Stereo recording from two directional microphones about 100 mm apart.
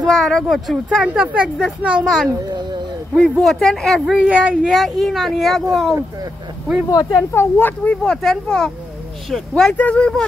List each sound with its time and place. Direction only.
0.0 s speech: 5° left (ahead or behind)
1.0 s speech: 10° right (ahead or behind)
3.2 s speech: centre (ahead or behind)
6.9 s speech: 40° left (ahead or behind)
7.3 s a child's voice: 20° left (ahead or behind)